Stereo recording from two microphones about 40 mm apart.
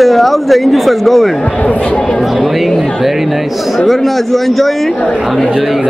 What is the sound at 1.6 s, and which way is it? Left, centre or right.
Speech, left.